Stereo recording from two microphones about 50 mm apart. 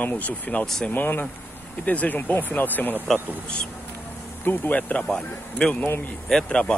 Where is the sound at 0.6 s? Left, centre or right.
Centre.